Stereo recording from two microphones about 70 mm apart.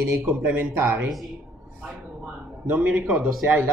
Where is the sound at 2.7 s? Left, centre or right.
Right.